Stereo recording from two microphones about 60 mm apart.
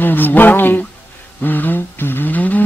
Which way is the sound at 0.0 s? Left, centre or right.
Left.